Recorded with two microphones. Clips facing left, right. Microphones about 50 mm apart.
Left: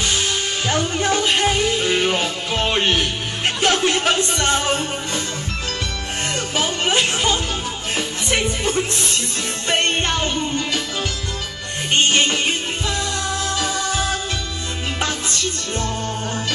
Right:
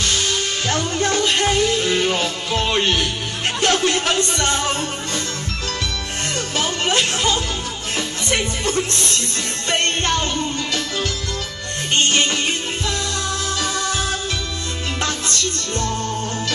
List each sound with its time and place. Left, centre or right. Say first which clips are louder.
0.0 s music: even; centre
6.3 s music: even; centre